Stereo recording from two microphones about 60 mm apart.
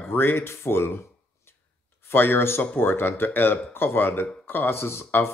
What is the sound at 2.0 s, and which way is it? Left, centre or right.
Speech, left.